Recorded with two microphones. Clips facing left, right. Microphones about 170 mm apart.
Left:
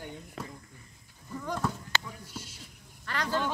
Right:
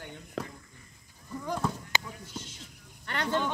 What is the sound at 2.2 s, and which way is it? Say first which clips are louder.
Speech: right 2 dB; 10° left (ahead or behind).